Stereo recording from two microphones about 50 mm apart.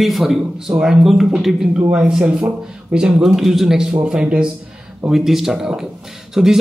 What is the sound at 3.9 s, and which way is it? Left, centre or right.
Speech, centre.